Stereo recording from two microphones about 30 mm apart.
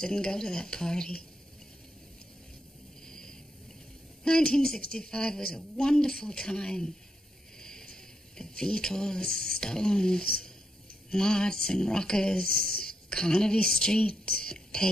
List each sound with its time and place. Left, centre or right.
0.0 s speech: left
3.1 s a sound: left
4.2 s speech: left